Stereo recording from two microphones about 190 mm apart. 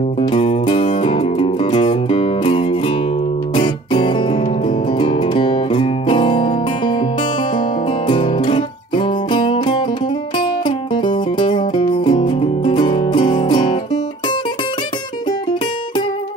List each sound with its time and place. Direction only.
0.3 s music: 30° left (ahead or behind)
8.1 s music: 25° left (ahead or behind)